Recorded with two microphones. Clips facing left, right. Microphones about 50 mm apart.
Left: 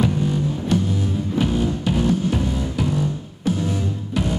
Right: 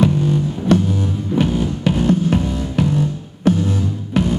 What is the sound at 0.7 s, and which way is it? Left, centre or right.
Music, right.